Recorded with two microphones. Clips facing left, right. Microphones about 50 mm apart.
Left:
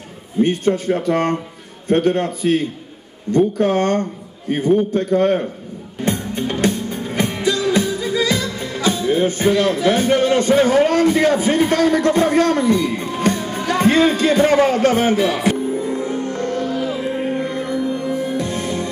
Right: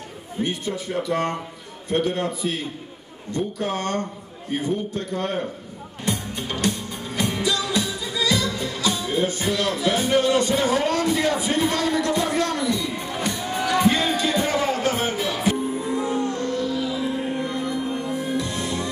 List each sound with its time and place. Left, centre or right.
0.4 s a man's voice: left
6.0 s music: left
15.8 s music: left